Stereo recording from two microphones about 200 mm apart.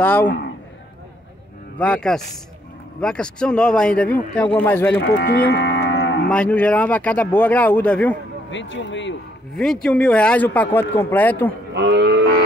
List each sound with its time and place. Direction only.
0.0 s speech: 10° left (ahead or behind)
1.8 s speech: 5° left (ahead or behind)
5.0 s livestock: 55° left (ahead or behind)
6.2 s speech: 5° left (ahead or behind)
8.5 s speech: 70° left (ahead or behind)
9.6 s speech: centre (ahead or behind)
11.7 s cattle: 60° right (ahead or behind)